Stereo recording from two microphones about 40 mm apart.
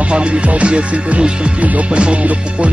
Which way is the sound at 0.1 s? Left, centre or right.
Right.